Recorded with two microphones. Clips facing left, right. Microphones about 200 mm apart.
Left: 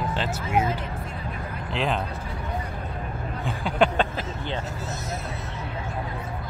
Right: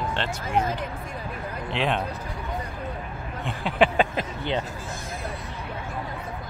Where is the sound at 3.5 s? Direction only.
Centre (ahead or behind).